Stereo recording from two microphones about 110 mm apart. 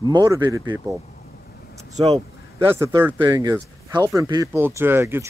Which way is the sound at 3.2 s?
40° right (ahead or behind).